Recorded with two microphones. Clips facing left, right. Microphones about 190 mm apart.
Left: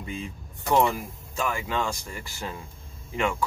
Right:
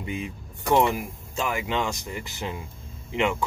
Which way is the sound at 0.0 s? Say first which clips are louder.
Right 3 dB; 20° right (ahead or behind).